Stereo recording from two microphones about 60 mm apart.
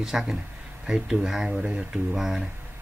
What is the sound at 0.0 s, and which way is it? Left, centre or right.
Speech, centre.